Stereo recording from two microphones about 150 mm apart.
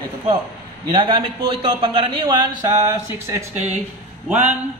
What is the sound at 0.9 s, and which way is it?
A man's voice, 35° right (ahead or behind).